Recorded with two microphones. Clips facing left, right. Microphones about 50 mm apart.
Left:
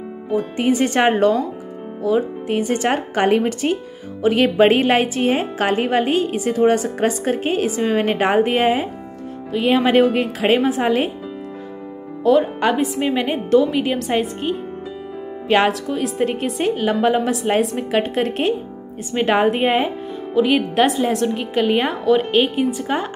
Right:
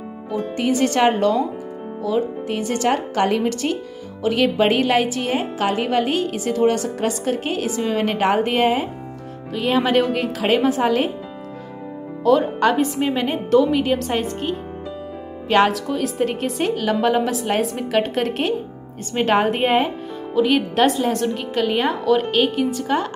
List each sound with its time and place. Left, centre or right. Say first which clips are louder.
0.6 s a woman's voice: even; centre
12.2 s a woman's voice: left 1 dB; centre
16.7 s a woman's voice: left 2 dB; centre
17.1 s a woman's voice: left 2 dB; centre